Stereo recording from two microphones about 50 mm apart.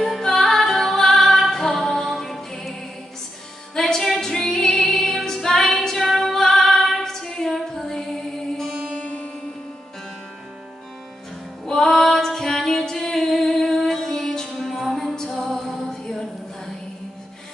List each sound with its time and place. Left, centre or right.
0.2 s a capella: centre
3.7 s female singing: centre
8.9 s music: left
11.6 s female singing: centre
14.6 s music: centre
14.9 s music: centre
15.1 s music: centre